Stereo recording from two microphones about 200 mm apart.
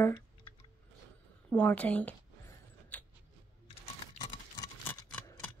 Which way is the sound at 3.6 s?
20° left (ahead or behind).